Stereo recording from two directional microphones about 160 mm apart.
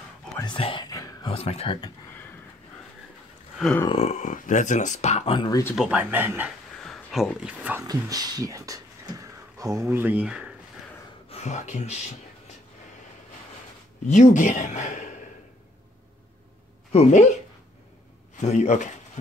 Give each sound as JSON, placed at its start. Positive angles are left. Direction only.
{"t": 0.4, "sound": "whispering", "side_deg": 30}
{"t": 1.3, "sound": "speech", "side_deg": 40}
{"t": 3.9, "sound": "speech", "side_deg": 45}
{"t": 5.8, "sound": "speech", "side_deg": -10}
{"t": 6.8, "sound": "speech", "side_deg": 0}
{"t": 7.8, "sound": "speech", "side_deg": -25}
{"t": 11.2, "sound": "speech", "side_deg": 45}
{"t": 14.0, "sound": "speech", "side_deg": 50}
{"t": 16.9, "sound": "speech", "side_deg": 40}
{"t": 18.4, "sound": "speech", "side_deg": 45}